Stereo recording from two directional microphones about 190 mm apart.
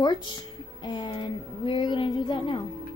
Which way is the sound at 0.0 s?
25° left (ahead or behind).